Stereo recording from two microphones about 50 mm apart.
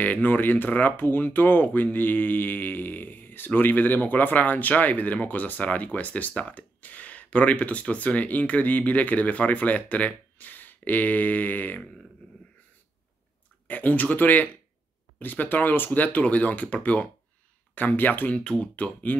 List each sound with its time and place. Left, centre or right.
0.0 s speech: left
13.7 s speech: left
18.4 s speech: centre
18.8 s speech: left